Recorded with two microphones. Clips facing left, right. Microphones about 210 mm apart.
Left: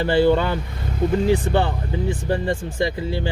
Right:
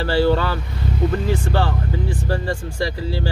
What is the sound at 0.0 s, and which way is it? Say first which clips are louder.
A man's voice: left 1 dB; 20° left (ahead or behind).